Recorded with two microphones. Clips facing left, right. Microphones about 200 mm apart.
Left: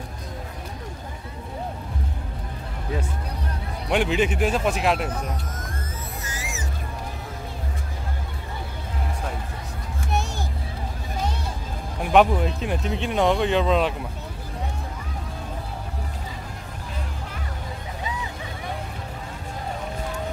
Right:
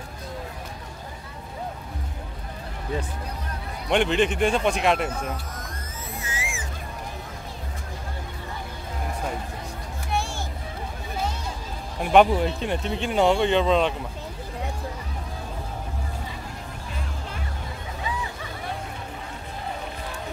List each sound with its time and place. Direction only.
3.9 s speech: 5° left (ahead or behind)
6.2 s a sound: 40° left (ahead or behind)
12.0 s speech: centre (ahead or behind)